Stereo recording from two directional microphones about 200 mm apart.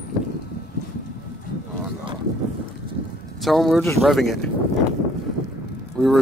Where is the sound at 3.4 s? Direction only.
Centre (ahead or behind).